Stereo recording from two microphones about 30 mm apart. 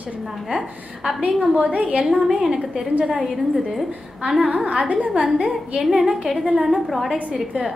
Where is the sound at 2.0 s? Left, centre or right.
Centre.